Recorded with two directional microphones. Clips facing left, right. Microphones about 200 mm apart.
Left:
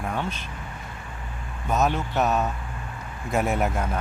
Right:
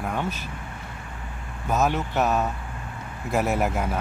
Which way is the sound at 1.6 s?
5° right (ahead or behind).